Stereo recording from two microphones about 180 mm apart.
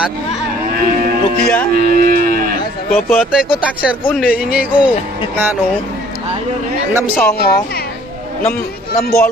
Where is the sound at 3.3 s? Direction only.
5° right (ahead or behind).